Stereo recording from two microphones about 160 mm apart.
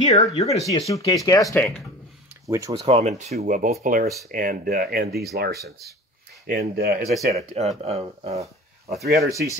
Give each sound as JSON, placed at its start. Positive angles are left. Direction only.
{"t": 0.0, "sound": "speech", "side_deg": 45}
{"t": 0.7, "sound": "speech", "side_deg": 20}
{"t": 2.4, "sound": "speech", "side_deg": -20}
{"t": 2.7, "sound": "speech", "side_deg": -35}
{"t": 3.3, "sound": "speech", "side_deg": -60}
{"t": 6.4, "sound": "speech", "side_deg": -70}
{"t": 7.3, "sound": "speech", "side_deg": -40}
{"t": 9.0, "sound": "speech", "side_deg": -90}